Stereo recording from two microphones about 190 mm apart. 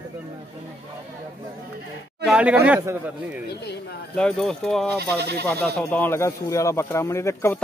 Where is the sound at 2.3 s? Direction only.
5° right (ahead or behind).